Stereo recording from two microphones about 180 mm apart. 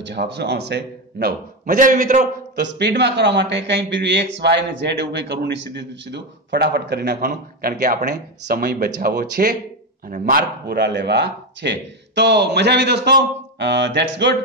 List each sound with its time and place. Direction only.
0.0 s a man's voice: 70° right (ahead or behind); by 2.2 s 45° right (ahead or behind)
2.5 s a man's voice: 75° right (ahead or behind)
7.7 s a man's voice: 45° right (ahead or behind); by 14.3 s 75° right (ahead or behind)